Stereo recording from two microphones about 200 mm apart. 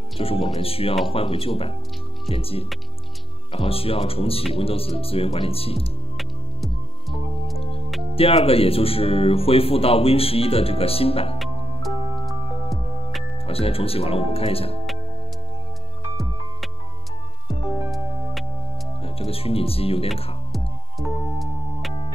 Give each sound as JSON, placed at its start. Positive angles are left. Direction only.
{"t": 0.2, "sound": "speech", "side_deg": 30}
{"t": 6.1, "sound": "music", "side_deg": 0}
{"t": 8.2, "sound": "speech", "side_deg": 30}
{"t": 11.3, "sound": "music", "side_deg": 0}
{"t": 13.5, "sound": "speech", "side_deg": 30}
{"t": 19.0, "sound": "speech", "side_deg": 30}